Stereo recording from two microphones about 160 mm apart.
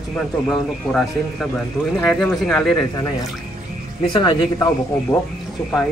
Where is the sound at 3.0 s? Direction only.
25° left (ahead or behind).